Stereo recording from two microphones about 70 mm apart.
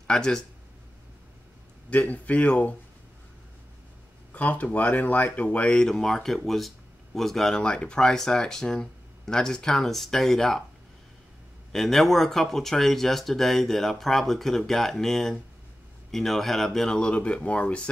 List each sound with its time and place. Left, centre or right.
0.0 s speech: centre
1.9 s speech: left
4.3 s speech: left; by 10.6 s centre
11.7 s speech: centre